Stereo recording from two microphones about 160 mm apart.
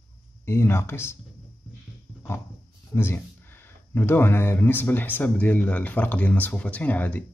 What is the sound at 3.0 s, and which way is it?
Speech, 15° left (ahead or behind).